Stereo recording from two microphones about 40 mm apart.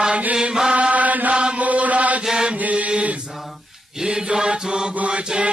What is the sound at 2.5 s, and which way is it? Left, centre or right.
Mantra, right.